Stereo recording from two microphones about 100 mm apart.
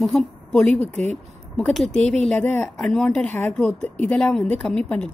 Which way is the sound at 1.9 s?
10° left (ahead or behind).